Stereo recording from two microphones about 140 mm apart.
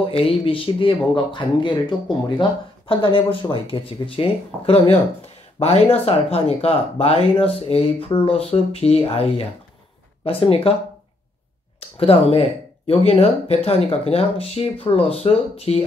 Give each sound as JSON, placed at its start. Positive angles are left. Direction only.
{"t": 0.0, "sound": "speech", "side_deg": 40}
{"t": 12.0, "sound": "speech", "side_deg": 45}